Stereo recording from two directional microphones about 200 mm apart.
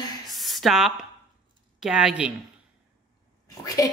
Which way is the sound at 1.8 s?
5° right (ahead or behind).